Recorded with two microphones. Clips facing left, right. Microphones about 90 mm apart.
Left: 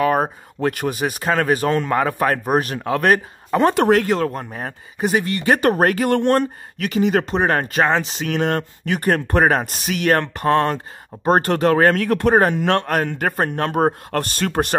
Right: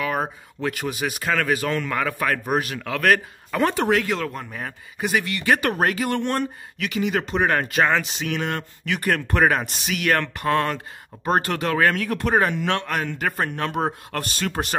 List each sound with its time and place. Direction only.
0.0 s speech: 40° left (ahead or behind)
3.7 s a man's voice: 50° left (ahead or behind)